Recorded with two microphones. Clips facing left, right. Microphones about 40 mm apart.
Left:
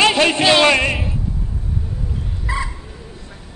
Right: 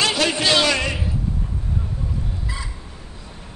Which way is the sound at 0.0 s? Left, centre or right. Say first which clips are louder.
Left 6 dB; left.